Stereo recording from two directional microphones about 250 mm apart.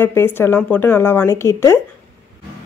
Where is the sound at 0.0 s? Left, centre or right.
Centre.